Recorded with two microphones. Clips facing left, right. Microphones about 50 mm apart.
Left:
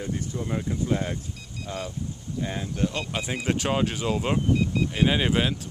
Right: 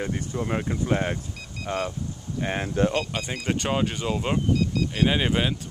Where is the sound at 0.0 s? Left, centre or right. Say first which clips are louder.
Right 2 dB; right.